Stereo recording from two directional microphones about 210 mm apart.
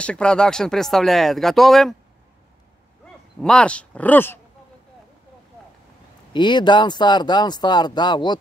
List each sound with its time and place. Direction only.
0.0 s speech: 5° left (ahead or behind)
3.3 s speech: 5° left (ahead or behind)
6.3 s speech: 20° left (ahead or behind)